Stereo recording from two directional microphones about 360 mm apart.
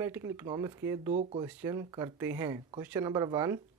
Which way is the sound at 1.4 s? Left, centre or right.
Centre.